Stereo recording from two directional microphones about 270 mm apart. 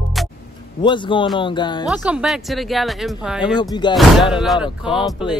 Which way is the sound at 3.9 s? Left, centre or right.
Centre.